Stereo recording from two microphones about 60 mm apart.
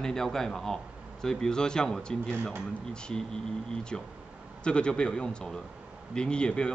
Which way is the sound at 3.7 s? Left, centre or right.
Centre.